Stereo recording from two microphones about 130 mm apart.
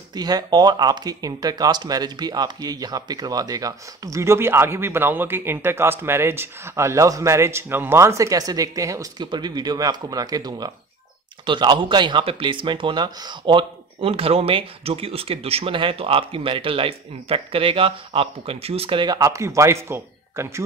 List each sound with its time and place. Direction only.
0.1 s speech: 30° right (ahead or behind)
13.9 s speech: 50° right (ahead or behind); by 20.6 s 20° right (ahead or behind)